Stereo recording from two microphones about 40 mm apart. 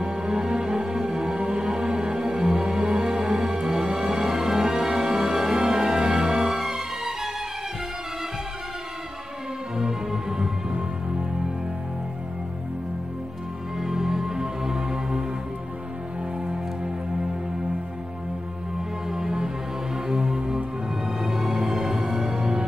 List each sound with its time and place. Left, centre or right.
0.0 s music: right
9.8 s music: centre
13.7 s music: centre
19.0 s music: centre